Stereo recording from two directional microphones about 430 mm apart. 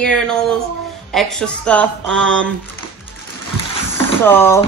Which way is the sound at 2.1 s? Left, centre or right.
Right.